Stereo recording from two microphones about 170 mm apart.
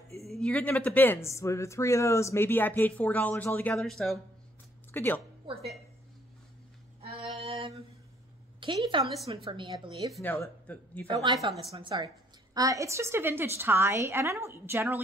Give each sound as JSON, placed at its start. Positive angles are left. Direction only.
{"t": 0.2, "sound": "speech", "side_deg": 0}
{"t": 4.9, "sound": "a woman's voice", "side_deg": 10}
{"t": 7.3, "sound": "a sound", "side_deg": -35}
{"t": 8.5, "sound": "a woman's voice", "side_deg": -30}
{"t": 10.2, "sound": "speech", "side_deg": 15}
{"t": 11.1, "sound": "speech", "side_deg": -25}
{"t": 11.3, "sound": "a woman's voice", "side_deg": 0}
{"t": 12.5, "sound": "a woman's voice", "side_deg": -20}